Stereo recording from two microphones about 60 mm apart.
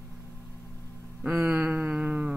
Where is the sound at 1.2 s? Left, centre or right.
Centre.